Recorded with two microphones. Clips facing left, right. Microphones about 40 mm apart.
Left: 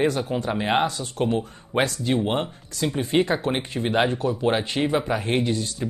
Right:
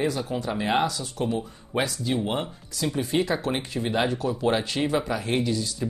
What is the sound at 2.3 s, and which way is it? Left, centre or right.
Speech, left.